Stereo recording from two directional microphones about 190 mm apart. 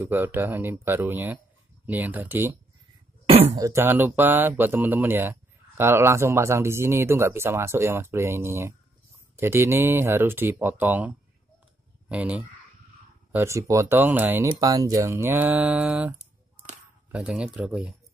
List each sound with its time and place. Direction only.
0.0 s speech: 10° right (ahead or behind)
3.3 s speech: 30° right (ahead or behind)
3.5 s speech: 15° right (ahead or behind)
16.2 s a sound: 35° right (ahead or behind)
17.1 s speech: 5° right (ahead or behind)